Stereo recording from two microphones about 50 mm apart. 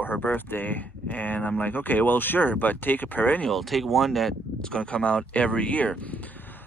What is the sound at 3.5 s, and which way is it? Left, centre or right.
Speech, centre.